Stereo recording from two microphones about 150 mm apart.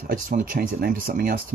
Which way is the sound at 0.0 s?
75° right (ahead or behind).